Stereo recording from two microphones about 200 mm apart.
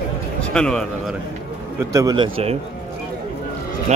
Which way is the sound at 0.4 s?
5° left (ahead or behind).